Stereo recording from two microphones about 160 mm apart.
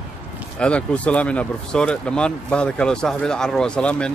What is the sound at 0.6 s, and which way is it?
Speech, 5° left (ahead or behind).